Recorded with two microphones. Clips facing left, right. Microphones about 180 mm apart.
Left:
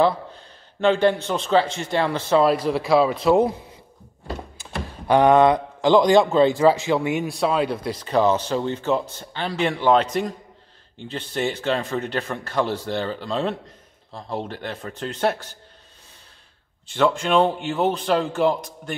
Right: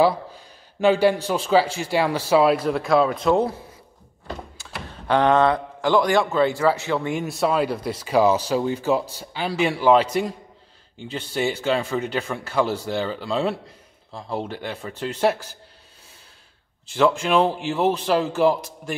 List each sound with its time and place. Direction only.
0.0 s speech: 10° right (ahead or behind); by 3.5 s 10° left (ahead or behind)
4.6 s speech: 15° left (ahead or behind); by 15.5 s 5° right (ahead or behind)
16.9 s speech: 5° right (ahead or behind)